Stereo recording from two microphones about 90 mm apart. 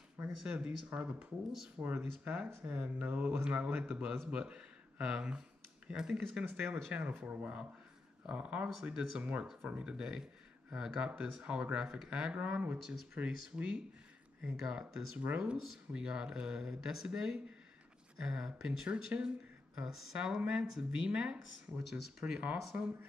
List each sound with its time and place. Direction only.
0.4 s speech: 10° right (ahead or behind)
3.9 s speech: 25° right (ahead or behind)
4.3 s speech: 10° right (ahead or behind)
6.5 s speech: 15° right (ahead or behind)